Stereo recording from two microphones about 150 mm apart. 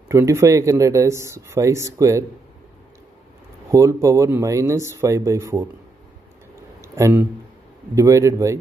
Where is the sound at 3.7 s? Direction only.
20° right (ahead or behind).